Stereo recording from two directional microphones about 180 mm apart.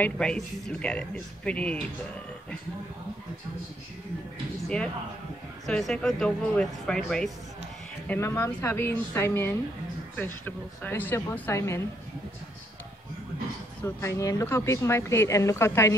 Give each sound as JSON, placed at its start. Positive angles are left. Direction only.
{"t": 0.0, "sound": "a woman's voice", "side_deg": 5}
{"t": 5.7, "sound": "a woman's voice", "side_deg": 0}
{"t": 13.8, "sound": "a woman's voice", "side_deg": 15}